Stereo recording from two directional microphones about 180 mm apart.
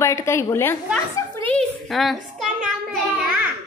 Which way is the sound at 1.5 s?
Centre (ahead or behind).